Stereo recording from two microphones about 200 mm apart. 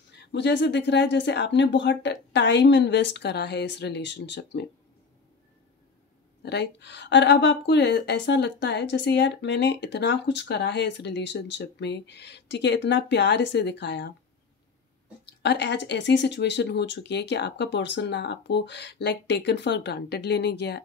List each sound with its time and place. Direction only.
0.1 s speech: 60° left (ahead or behind)
6.4 s speech: 60° left (ahead or behind)
15.2 s speech: 60° left (ahead or behind)